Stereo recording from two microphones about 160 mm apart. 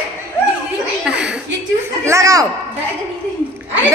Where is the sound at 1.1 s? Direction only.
5° right (ahead or behind).